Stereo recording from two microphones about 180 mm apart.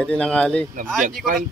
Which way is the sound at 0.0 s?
5° left (ahead or behind).